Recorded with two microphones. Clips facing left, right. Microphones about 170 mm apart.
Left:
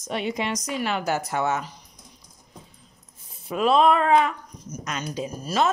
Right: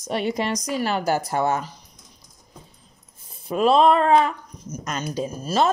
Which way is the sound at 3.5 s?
35° right (ahead or behind).